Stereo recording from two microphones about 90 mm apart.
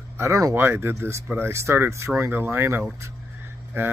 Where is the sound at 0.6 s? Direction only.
25° right (ahead or behind).